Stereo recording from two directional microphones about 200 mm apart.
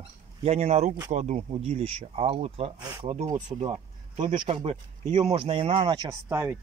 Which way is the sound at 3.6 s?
25° right (ahead or behind).